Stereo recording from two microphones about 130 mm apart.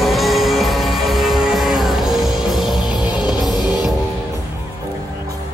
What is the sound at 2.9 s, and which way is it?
Music, 35° left (ahead or behind).